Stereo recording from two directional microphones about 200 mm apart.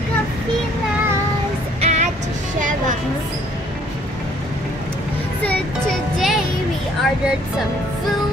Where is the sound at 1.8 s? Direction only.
35° right (ahead or behind).